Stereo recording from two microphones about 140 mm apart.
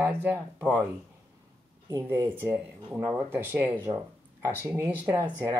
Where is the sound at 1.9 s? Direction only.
20° right (ahead or behind).